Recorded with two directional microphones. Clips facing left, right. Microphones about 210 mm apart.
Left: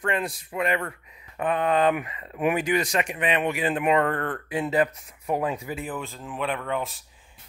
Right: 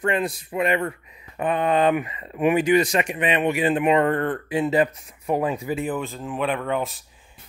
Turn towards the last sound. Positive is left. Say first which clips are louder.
# right 4 dB
turn(degrees=-5)  # may be behind; listen again after turning